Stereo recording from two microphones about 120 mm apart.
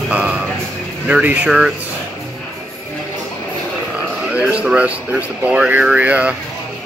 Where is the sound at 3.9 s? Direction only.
10° right (ahead or behind).